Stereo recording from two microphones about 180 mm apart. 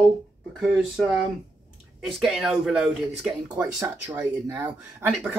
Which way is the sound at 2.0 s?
Centre (ahead or behind).